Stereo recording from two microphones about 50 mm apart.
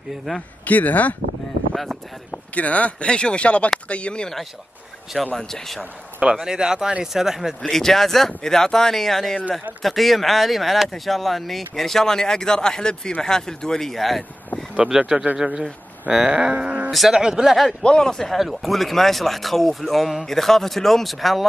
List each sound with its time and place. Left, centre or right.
0.7 s speech: left
2.3 s speech: left
5.1 s speech: centre
6.3 s speech: centre
7.7 s speech: centre
14.9 s speech: centre
16.3 s a sound: centre
16.5 s speech: right
17.1 s speech: centre
17.8 s speech: centre